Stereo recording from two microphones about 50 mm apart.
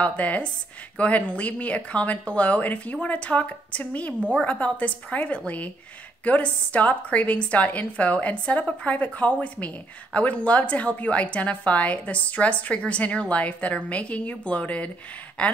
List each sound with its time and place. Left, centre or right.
0.0 s a woman's voice: left